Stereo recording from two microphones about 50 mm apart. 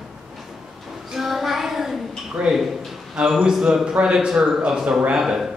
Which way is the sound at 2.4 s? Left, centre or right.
Right.